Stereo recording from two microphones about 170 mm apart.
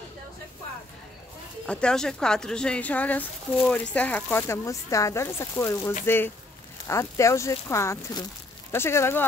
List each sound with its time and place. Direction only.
1.7 s speech: 5° left (ahead or behind)